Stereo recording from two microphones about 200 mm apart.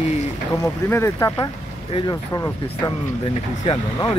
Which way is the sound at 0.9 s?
15° left (ahead or behind).